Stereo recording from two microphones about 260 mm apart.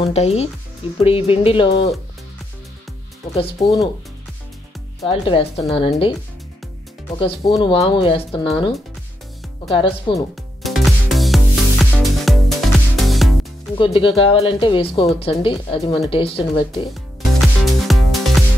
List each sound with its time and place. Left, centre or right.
0.0 s speech: left
3.3 s speech: centre
5.0 s speech: left
7.2 s speech: centre
9.8 s speech: centre
10.6 s music: centre
13.7 s speech: left
17.4 s music: centre